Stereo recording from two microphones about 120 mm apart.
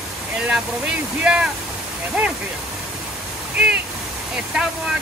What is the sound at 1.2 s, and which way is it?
Speech, 10° right (ahead or behind).